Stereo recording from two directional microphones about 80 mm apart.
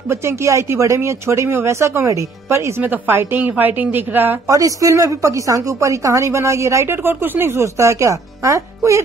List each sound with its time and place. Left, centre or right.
0.1 s a woman's voice: right
2.8 s a woman's voice: right
4.5 s a woman's voice: right